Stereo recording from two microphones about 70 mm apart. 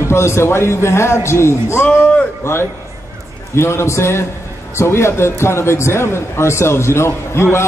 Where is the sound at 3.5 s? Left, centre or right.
Left.